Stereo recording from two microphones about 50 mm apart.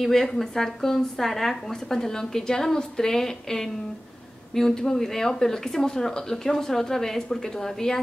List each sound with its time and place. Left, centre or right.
0.0 s speech: centre